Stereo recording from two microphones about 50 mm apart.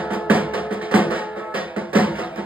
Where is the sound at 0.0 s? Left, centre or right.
Right.